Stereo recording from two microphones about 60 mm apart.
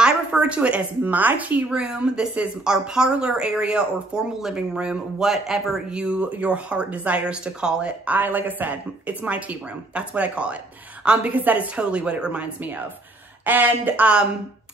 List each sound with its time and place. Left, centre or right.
0.0 s a woman's voice: centre
1.7 s a woman's voice: centre
5.9 s a woman's voice: centre
8.1 s a woman's voice: right
13.5 s speech: right